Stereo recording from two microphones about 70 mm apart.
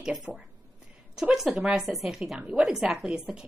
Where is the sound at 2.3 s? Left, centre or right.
Centre.